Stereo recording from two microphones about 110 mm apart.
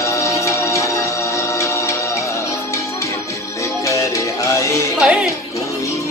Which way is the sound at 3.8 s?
30° left (ahead or behind).